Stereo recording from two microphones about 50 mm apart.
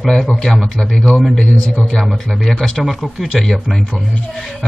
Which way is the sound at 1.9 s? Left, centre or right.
Centre.